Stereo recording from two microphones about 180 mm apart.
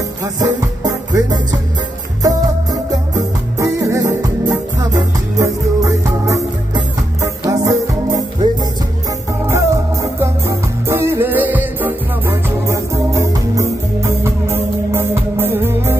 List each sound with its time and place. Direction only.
0.2 s music: 20° right (ahead or behind)
3.2 s music: 20° right (ahead or behind)